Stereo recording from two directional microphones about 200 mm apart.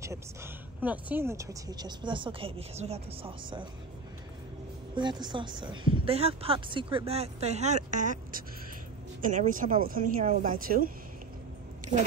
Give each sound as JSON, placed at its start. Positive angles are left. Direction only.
{"t": 0.0, "sound": "speech", "side_deg": -15}
{"t": 4.9, "sound": "speech", "side_deg": -20}